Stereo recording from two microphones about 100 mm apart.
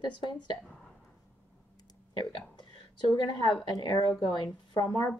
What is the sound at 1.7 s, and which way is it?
Clicking, 40° left (ahead or behind).